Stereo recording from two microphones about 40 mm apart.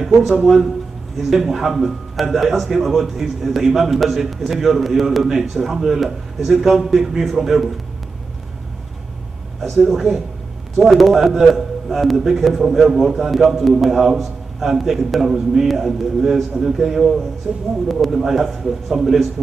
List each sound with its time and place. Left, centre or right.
0.0 s a man's voice: centre
9.9 s a man's voice: centre
17.4 s speech: right
17.8 s a man's voice: centre